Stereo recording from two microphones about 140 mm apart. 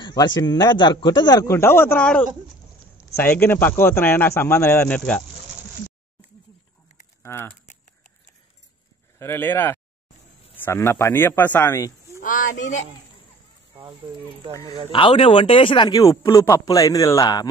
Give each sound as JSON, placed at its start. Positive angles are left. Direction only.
{"t": 0.0, "sound": "speech", "side_deg": 30}
{"t": 7.2, "sound": "speech", "side_deg": 15}
{"t": 9.2, "sound": "speech", "side_deg": 15}
{"t": 12.2, "sound": "speech", "side_deg": 70}
{"t": 13.7, "sound": "speech", "side_deg": -35}
{"t": 14.5, "sound": "speech", "side_deg": 25}
{"t": 14.9, "sound": "speech", "side_deg": 40}